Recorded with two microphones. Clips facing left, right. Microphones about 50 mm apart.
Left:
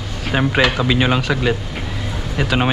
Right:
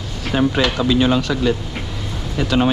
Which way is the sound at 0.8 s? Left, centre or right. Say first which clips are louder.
Right 1 dB; left.